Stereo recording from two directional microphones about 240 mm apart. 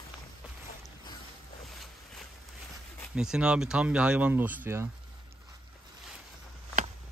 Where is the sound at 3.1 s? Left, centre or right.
Centre.